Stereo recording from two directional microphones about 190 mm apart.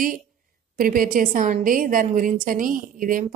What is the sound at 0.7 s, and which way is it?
A woman's voice, 45° right (ahead or behind).